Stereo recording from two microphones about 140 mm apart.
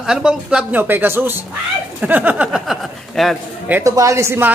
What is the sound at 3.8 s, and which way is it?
Speech, 25° right (ahead or behind).